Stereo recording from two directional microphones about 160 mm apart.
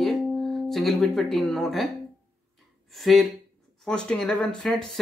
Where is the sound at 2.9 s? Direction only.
Centre (ahead or behind).